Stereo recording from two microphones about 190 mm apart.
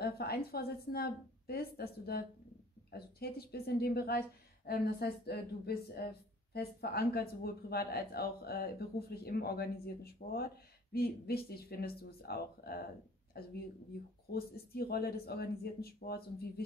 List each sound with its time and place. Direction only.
0.0 s a woman's voice: 55° left (ahead or behind)